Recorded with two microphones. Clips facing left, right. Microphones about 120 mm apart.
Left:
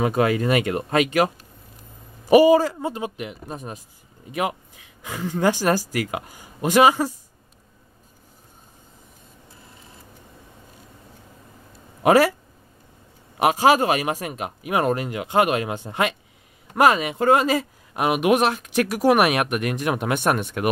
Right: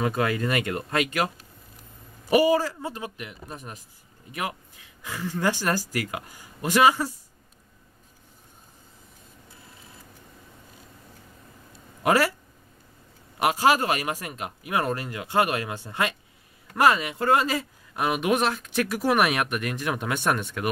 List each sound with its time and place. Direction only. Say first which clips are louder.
0.0 s speech: left 5 dB; 20° left (ahead or behind)
12.0 s speech: left 6 dB; 15° left (ahead or behind)
13.4 s speech: left 4 dB; 15° left (ahead or behind)